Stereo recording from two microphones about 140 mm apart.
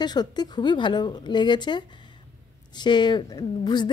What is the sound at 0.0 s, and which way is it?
Speech, 30° left (ahead or behind).